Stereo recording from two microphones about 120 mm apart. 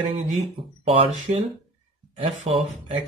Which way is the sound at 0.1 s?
50° right (ahead or behind).